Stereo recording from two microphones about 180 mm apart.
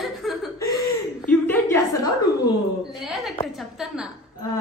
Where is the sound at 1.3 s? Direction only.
10° left (ahead or behind).